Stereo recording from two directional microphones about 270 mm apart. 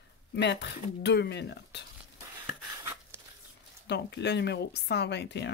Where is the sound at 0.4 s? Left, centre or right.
Left.